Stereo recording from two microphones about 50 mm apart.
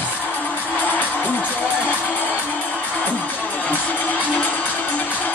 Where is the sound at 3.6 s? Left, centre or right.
Left.